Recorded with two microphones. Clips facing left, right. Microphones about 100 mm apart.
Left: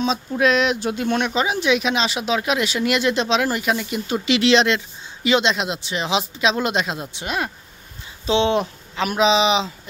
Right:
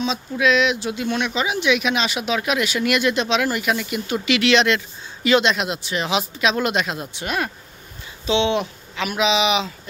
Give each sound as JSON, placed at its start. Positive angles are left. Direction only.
{"t": 0.0, "sound": "speech", "side_deg": 40}
{"t": 8.3, "sound": "speech", "side_deg": 35}